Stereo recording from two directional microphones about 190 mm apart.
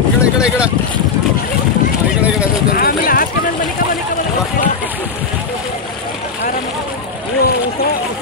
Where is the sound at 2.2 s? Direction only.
5° right (ahead or behind).